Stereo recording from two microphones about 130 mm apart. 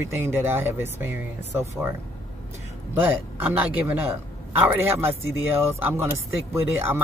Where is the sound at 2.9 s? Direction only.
15° right (ahead or behind).